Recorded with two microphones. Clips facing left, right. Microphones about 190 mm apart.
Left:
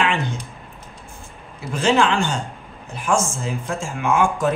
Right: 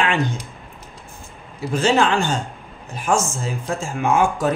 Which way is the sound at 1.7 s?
40° right (ahead or behind).